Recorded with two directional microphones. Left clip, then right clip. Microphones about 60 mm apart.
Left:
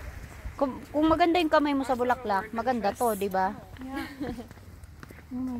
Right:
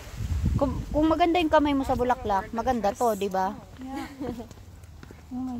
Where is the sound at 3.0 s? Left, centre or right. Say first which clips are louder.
Right 2 dB; right.